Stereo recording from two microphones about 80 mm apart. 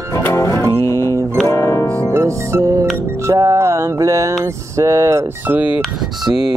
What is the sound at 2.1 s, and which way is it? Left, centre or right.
Music, right.